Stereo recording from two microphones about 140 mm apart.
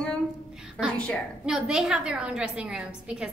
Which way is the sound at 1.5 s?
5° right (ahead or behind).